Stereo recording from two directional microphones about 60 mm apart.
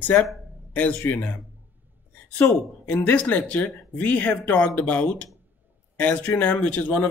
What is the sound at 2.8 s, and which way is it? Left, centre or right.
Speech, left.